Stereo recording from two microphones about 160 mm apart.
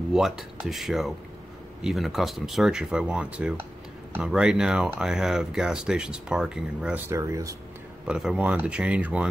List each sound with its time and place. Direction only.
0.1 s speech: centre (ahead or behind)
7.1 s speech: 20° right (ahead or behind)
8.1 s speech: 5° right (ahead or behind)